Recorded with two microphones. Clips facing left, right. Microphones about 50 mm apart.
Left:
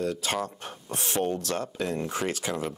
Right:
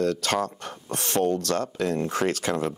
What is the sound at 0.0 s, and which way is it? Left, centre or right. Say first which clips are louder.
Speech: right 5 dB; right.